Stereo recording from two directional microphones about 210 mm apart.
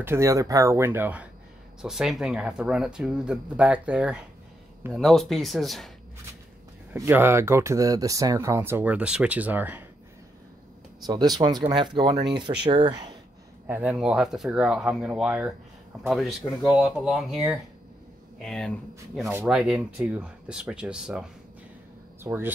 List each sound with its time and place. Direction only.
0.0 s speech: 15° right (ahead or behind)
6.9 s speech: 10° right (ahead or behind)
11.1 s speech: 20° right (ahead or behind)
13.7 s speech: 5° right (ahead or behind)